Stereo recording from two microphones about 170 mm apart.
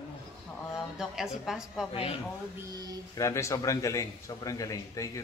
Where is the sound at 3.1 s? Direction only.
15° left (ahead or behind).